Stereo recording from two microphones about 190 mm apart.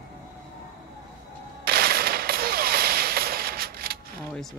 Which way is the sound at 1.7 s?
55° right (ahead or behind).